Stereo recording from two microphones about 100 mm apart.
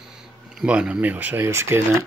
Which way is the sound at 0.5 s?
10° right (ahead or behind).